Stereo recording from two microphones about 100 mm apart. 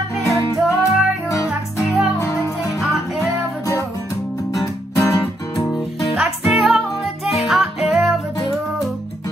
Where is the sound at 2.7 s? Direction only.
Centre (ahead or behind).